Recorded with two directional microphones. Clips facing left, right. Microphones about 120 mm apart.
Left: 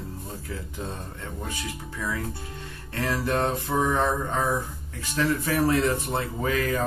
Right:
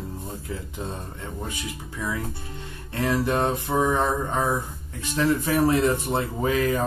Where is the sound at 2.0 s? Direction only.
20° right (ahead or behind).